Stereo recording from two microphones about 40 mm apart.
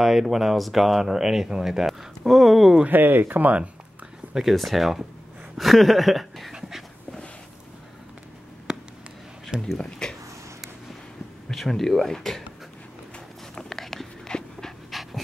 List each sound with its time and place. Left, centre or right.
0.0 s speech: centre
2.9 s speech: right
4.3 s speech: centre
8.7 s a sound: centre
9.8 s speech: left
11.5 s speech: centre
13.6 s a sound: centre
14.2 s dog: centre
14.9 s pant: centre